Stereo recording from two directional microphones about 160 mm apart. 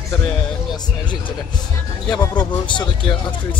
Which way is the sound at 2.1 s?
25° left (ahead or behind).